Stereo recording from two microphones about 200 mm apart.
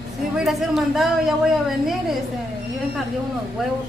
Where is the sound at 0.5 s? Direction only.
Centre (ahead or behind).